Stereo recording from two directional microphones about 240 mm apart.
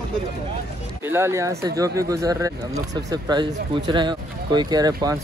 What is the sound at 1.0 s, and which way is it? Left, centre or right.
Speech, centre.